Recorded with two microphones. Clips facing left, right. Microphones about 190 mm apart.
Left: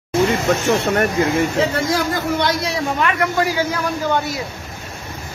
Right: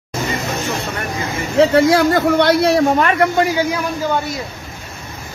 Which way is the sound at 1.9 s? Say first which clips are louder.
Right 7 dB; 65° right (ahead or behind).